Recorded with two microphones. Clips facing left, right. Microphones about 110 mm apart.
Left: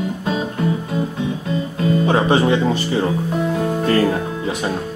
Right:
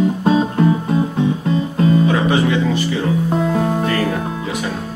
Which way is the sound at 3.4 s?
35° right (ahead or behind).